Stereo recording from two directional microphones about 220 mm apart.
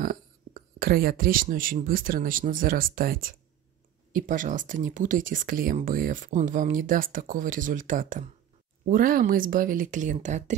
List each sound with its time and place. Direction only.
0.0 s speech: 40° right (ahead or behind)